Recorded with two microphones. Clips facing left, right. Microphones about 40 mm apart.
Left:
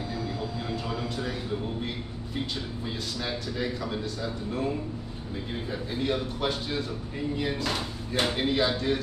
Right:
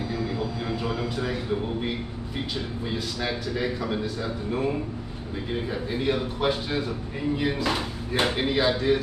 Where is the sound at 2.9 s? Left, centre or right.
Centre.